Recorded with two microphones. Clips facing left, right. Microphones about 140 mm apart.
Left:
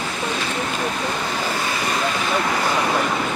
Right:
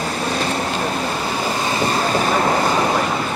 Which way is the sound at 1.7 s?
30° right (ahead or behind).